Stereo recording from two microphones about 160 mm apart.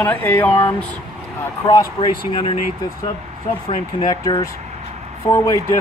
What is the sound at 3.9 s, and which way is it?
Speech, 25° left (ahead or behind).